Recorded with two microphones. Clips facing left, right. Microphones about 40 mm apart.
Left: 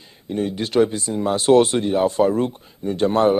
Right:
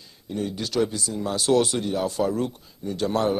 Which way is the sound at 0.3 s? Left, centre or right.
Left.